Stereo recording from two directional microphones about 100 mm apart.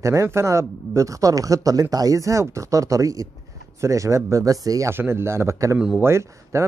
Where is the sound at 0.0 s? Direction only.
30° right (ahead or behind).